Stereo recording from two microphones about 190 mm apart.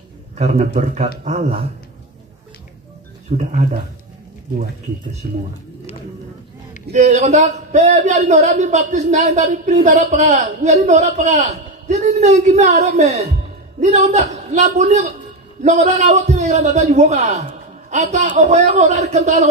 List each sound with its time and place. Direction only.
0.4 s a man's voice: 35° right (ahead or behind)
3.3 s a man's voice: 35° right (ahead or behind)
6.9 s a man's voice: 35° right (ahead or behind)